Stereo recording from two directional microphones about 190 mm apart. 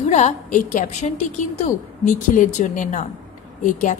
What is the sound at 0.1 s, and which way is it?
A woman's voice, 40° left (ahead or behind).